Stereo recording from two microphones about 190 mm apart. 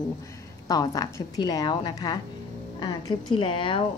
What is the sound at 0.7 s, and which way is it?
Speech, 20° left (ahead or behind).